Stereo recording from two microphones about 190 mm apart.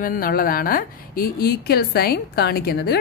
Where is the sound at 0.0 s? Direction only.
50° left (ahead or behind).